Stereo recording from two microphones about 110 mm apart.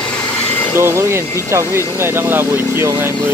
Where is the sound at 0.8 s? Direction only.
25° right (ahead or behind).